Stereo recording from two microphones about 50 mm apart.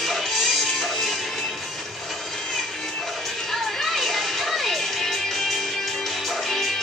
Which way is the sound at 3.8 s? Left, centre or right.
Centre.